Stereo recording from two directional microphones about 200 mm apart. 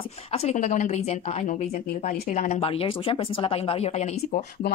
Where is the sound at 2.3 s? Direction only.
30° left (ahead or behind).